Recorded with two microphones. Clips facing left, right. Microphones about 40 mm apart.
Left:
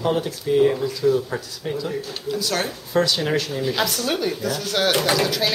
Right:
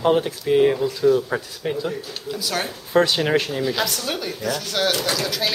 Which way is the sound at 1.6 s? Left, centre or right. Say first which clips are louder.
Even; right.